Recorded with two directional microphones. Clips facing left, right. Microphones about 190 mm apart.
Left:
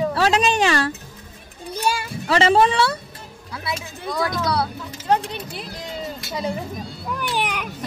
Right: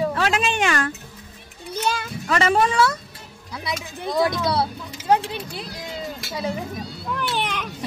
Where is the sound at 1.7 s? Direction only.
10° left (ahead or behind).